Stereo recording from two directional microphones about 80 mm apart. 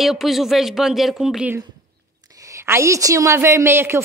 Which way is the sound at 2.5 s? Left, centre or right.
Right.